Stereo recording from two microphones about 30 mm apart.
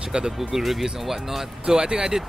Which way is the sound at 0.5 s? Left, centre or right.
Centre.